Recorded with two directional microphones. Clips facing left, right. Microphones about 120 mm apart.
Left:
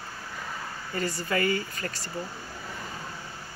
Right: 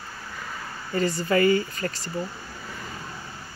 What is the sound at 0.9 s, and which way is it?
Speech, 25° right (ahead or behind).